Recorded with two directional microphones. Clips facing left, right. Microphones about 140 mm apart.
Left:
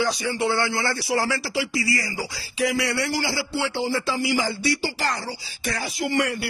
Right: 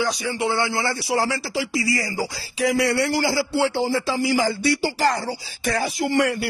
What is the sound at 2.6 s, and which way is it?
Speech, 45° right (ahead or behind).